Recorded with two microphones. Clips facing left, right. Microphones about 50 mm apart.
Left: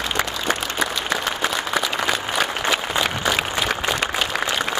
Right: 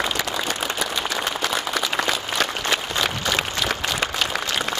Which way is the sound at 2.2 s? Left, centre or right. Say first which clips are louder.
Left 2 dB; centre.